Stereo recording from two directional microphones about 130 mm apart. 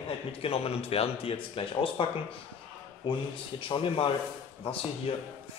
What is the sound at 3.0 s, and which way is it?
Speech, 35° left (ahead or behind).